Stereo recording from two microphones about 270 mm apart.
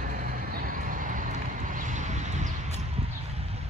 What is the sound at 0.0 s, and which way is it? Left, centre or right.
Vehicle, right.